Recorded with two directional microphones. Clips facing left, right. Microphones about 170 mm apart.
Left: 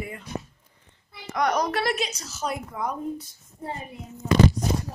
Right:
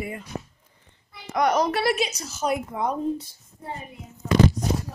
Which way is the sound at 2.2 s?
15° right (ahead or behind).